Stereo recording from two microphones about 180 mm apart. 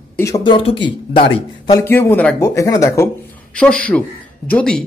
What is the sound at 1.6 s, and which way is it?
Speech, 15° left (ahead or behind).